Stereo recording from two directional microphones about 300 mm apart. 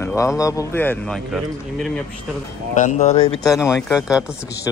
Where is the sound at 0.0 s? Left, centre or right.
Centre.